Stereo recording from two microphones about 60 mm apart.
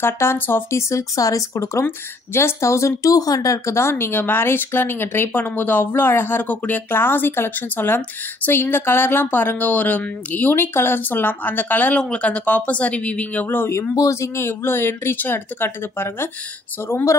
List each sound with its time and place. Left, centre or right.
0.0 s speech: left
3.0 s speech: left
3.9 s speech: left
12.0 s speech: centre
13.5 s speech: left
13.9 s speech: left